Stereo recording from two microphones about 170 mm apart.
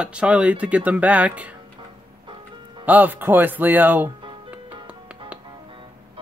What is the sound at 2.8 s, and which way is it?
Speech, 10° right (ahead or behind).